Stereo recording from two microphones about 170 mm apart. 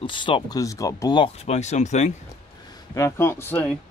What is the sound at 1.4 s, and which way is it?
Speech, 40° left (ahead or behind).